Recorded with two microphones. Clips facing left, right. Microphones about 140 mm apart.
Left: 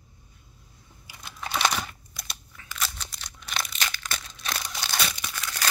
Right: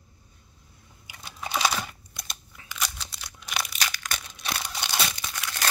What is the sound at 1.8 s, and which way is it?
Crunch, 5° left (ahead or behind).